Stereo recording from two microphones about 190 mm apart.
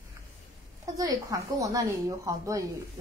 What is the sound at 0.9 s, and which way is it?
A woman's voice, 20° right (ahead or behind).